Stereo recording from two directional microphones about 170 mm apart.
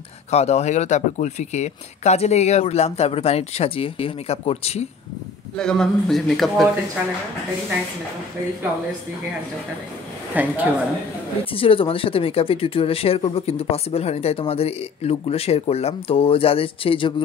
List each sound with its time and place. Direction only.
0.3 s speech: 40° left (ahead or behind)
5.6 s a man's voice: 5° left (ahead or behind)
10.3 s a woman's voice: 10° right (ahead or behind)
11.5 s speech: 30° left (ahead or behind)